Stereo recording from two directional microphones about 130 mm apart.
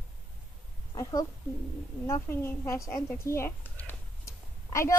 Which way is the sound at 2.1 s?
20° left (ahead or behind).